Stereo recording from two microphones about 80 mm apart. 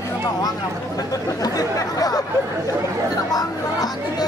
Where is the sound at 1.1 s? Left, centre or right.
Left.